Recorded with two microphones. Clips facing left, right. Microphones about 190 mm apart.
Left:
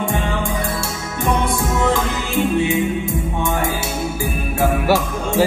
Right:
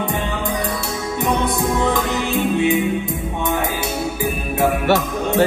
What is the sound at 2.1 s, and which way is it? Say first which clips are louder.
Music: even; 20° right (ahead or behind).